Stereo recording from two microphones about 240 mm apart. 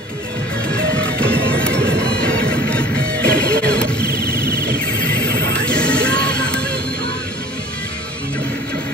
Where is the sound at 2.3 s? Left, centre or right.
Right.